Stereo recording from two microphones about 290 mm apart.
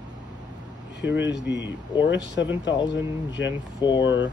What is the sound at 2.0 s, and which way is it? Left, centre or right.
Speech, left.